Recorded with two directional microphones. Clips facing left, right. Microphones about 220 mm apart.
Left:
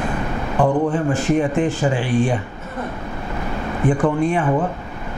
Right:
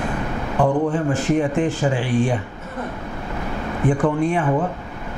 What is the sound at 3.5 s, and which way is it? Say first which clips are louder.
Speech: left 1 dB; 20° left (ahead or behind).